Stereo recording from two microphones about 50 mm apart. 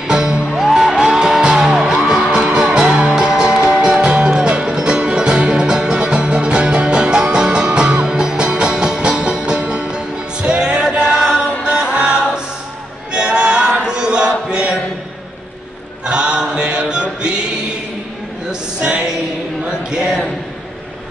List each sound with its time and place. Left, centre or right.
0.1 s music: centre
4.0 s music: right
11.1 s music: centre
13.1 s choir: centre
16.1 s choir: centre
18.5 s music: centre
20.0 s a sound: centre